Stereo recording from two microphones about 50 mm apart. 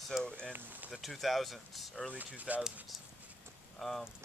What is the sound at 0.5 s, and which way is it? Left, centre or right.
Speech, right.